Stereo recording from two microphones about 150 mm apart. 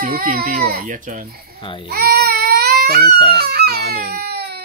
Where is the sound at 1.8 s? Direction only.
90° right.